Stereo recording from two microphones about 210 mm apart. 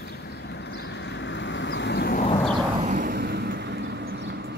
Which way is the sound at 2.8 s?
35° right (ahead or behind).